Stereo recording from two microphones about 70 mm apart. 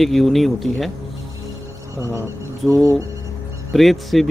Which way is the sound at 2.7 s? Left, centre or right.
Right.